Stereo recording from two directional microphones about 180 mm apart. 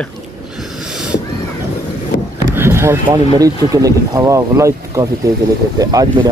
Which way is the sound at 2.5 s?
15° right (ahead or behind).